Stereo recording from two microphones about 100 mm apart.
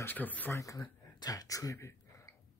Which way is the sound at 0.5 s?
35° left (ahead or behind).